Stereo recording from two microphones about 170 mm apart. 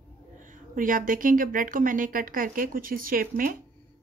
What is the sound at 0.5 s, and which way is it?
Speech, 50° right (ahead or behind).